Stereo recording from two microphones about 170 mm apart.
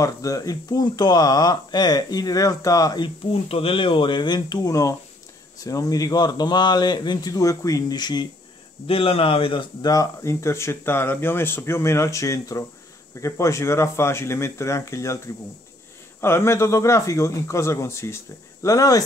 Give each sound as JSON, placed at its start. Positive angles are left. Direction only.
{"t": 0.0, "sound": "speech", "side_deg": 20}
{"t": 3.4, "sound": "speech", "side_deg": 35}
{"t": 16.2, "sound": "speech", "side_deg": 15}